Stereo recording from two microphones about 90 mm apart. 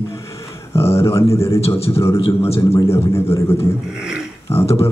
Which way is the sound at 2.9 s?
30° left (ahead or behind).